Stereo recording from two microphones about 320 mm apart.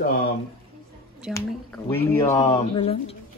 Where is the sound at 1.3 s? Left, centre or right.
Centre.